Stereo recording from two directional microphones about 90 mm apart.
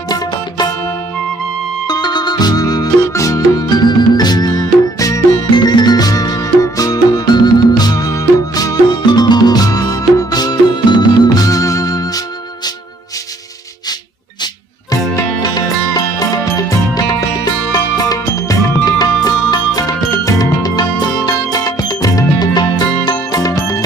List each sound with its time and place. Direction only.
1.9 s music: 50° left (ahead or behind)
14.4 s music: 45° left (ahead or behind)